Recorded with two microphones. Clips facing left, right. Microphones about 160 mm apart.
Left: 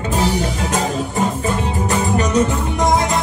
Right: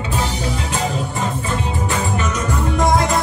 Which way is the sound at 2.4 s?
20° left (ahead or behind).